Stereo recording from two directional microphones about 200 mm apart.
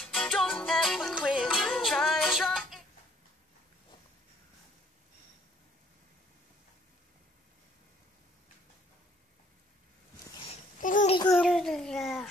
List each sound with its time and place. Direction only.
0.0 s music: 5° left (ahead or behind)
10.8 s babbling: 40° left (ahead or behind)
11.3 s babbling: centre (ahead or behind)